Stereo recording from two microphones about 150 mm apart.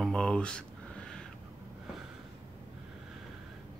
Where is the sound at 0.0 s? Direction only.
5° left (ahead or behind).